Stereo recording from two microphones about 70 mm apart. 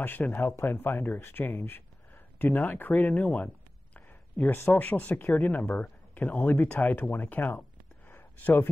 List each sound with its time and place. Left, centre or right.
0.0 s speech: left
4.5 s speech: left
8.1 s a sound: left